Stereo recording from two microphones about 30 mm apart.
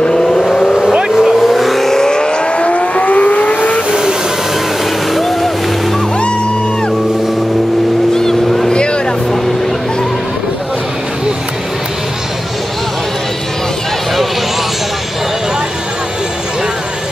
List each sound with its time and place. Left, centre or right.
0.0 s vehicle: centre
1.0 s vehicle: centre
1.5 s vehicle: centre
1.9 s vehicle: left
5.1 s music: centre
8.1 s vehicle: centre
8.7 s vehicle: left